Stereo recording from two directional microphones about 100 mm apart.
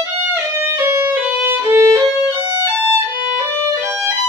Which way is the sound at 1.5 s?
25° right (ahead or behind).